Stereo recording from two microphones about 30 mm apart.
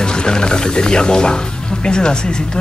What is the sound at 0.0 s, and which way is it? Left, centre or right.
Speech, left.